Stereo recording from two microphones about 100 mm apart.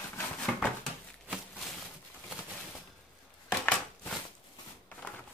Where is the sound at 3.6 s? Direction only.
10° left (ahead or behind).